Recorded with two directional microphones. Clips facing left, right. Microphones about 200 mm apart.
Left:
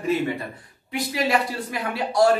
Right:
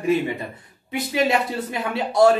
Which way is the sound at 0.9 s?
25° right (ahead or behind).